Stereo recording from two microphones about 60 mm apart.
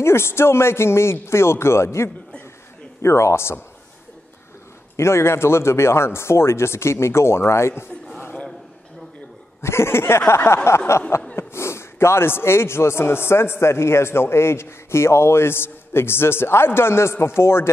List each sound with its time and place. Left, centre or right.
0.0 s a man's voice: left
4.9 s a man's voice: left
9.6 s a man's voice: left